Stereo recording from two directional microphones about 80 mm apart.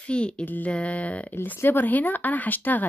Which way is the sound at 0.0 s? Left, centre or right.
Centre.